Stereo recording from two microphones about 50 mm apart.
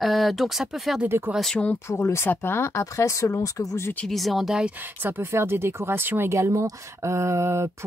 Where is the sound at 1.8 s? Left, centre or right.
Left.